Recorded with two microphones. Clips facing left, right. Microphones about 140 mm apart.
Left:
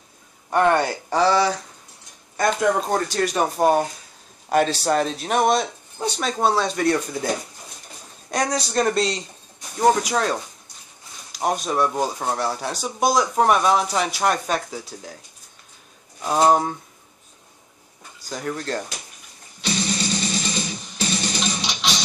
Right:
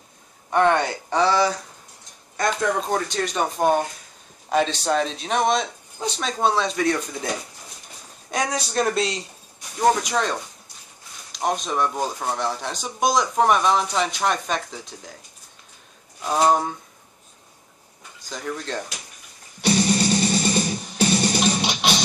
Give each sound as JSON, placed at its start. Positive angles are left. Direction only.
{"t": 0.5, "sound": "speech", "side_deg": 5}
{"t": 8.3, "sound": "speech", "side_deg": 0}
{"t": 11.3, "sound": "speech", "side_deg": 5}
{"t": 16.3, "sound": "speech", "side_deg": 10}
{"t": 18.3, "sound": "speech", "side_deg": 5}
{"t": 19.6, "sound": "music", "side_deg": -55}